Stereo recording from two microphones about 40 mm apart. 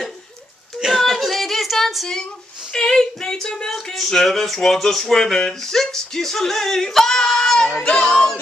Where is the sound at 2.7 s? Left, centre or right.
Centre.